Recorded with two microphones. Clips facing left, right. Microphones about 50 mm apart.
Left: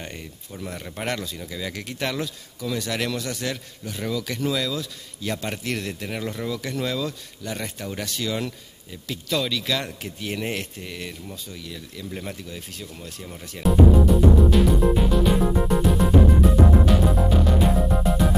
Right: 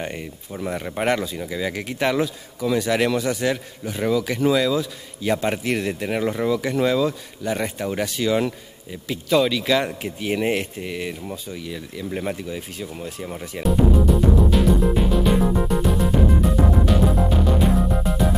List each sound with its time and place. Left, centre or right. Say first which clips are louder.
0.0 s speech: right 7 dB; centre
13.6 s music: left 1 dB; centre